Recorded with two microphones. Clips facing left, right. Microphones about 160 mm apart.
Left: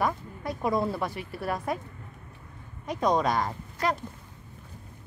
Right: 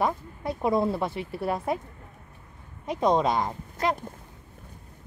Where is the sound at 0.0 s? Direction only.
25° right (ahead or behind).